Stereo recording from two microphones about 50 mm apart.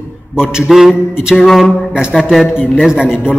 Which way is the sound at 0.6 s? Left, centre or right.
Centre.